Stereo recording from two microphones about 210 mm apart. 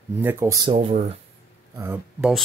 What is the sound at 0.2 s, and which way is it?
Speech, 10° right (ahead or behind).